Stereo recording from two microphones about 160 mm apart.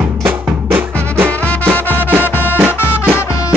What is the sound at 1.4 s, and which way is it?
Music, 10° left (ahead or behind).